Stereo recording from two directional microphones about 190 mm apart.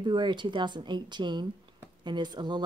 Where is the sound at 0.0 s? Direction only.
25° right (ahead or behind).